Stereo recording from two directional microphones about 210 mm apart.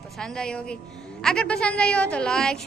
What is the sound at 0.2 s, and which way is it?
A woman's voice, 5° left (ahead or behind).